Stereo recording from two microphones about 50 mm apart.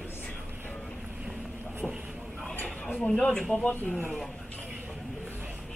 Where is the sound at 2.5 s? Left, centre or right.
Left.